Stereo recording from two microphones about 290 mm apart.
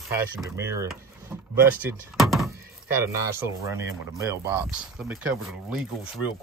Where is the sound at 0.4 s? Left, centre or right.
Centre.